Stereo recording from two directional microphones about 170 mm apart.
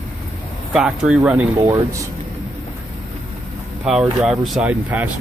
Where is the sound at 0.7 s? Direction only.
5° right (ahead or behind).